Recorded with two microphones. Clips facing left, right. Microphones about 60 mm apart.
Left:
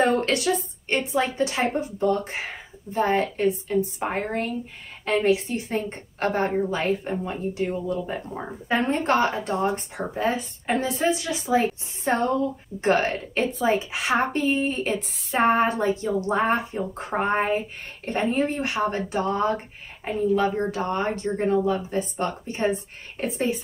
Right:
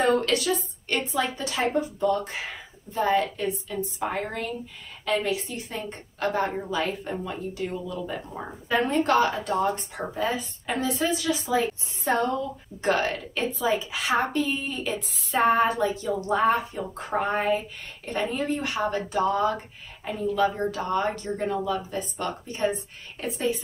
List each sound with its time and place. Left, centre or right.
0.0 s speech: left